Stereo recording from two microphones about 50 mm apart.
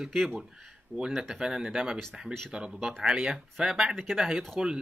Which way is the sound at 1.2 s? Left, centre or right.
Centre.